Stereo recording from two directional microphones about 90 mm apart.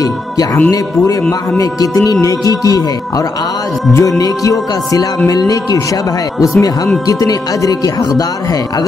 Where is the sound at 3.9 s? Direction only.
40° left (ahead or behind).